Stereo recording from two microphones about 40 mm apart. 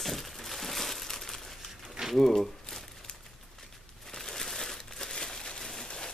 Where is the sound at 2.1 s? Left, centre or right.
Centre.